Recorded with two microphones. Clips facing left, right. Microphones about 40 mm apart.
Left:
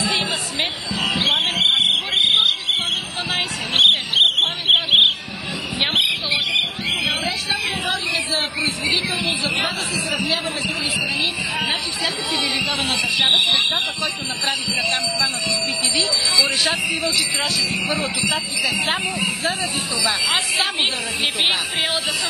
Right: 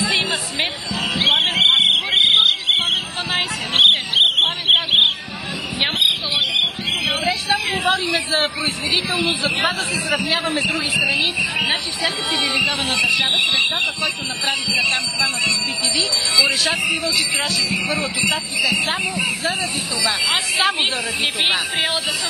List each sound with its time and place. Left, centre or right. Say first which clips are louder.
0.3 s basketball bounce: right 1 dB; centre
1.2 s basketball bounce: right 4 dB; right
3.3 s a sound: right 2 dB; centre
7.9 s a sound: right 3 dB; right
10.3 s a man's voice: right 3 dB; right
12.4 s speech: right 3 dB; right
12.8 s speech: right 2 dB; centre
16.4 s speech: right 2 dB; centre
21.2 s speech: even; centre